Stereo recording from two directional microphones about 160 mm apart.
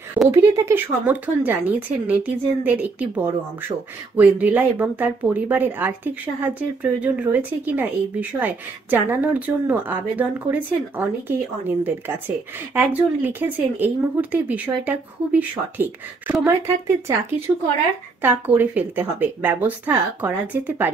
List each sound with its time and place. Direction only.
0.3 s speech: 15° right (ahead or behind)
18.2 s speech: 10° right (ahead or behind)